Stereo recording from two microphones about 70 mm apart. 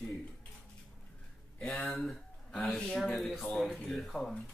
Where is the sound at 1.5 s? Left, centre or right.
Centre.